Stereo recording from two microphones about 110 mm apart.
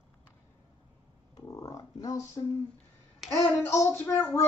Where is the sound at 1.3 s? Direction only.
30° left (ahead or behind).